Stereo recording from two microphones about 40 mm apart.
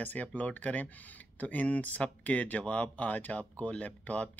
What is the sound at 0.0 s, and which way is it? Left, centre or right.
Speech, left.